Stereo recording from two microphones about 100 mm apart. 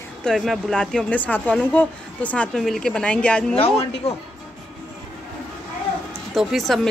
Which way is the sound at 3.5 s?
80° left.